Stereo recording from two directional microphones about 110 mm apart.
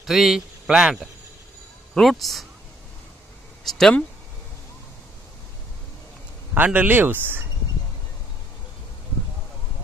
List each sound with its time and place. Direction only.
0.0 s a man's voice: 5° right (ahead or behind)
3.6 s speech: 5° left (ahead or behind)
6.5 s speech: 15° right (ahead or behind)